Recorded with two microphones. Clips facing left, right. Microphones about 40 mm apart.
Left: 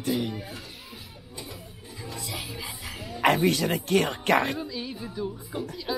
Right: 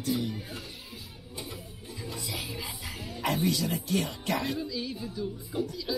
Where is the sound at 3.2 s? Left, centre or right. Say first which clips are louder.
Left 6 dB; left.